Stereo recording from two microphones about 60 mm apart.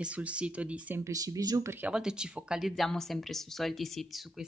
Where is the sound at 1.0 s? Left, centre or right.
Right.